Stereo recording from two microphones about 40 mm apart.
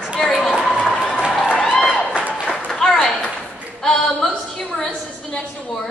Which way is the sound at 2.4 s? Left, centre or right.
Centre.